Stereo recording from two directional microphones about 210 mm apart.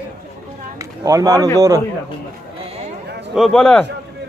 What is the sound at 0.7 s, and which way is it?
Speech, 15° right (ahead or behind).